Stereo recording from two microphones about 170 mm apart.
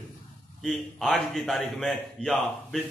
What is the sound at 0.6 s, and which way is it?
A man's voice, centre (ahead or behind).